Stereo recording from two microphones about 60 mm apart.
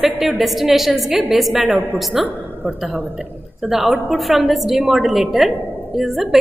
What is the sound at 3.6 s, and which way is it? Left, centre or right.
A woman's voice, centre.